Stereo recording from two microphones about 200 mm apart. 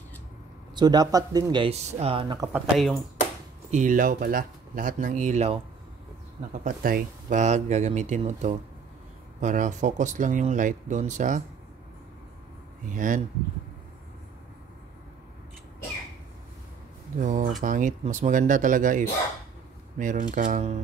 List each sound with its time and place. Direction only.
0.7 s speech: 20° right (ahead or behind)
2.5 s speech: centre (ahead or behind)
3.7 s speech: 40° right (ahead or behind)
6.6 s speech: 40° right (ahead or behind)
12.9 s speech: 40° right (ahead or behind)
17.2 s speech: 40° right (ahead or behind)